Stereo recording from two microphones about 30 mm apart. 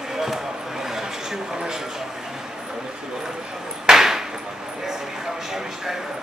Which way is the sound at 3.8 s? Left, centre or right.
Centre.